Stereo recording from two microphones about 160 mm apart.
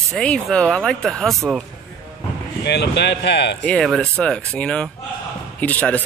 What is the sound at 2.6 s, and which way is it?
Speech, 90° left.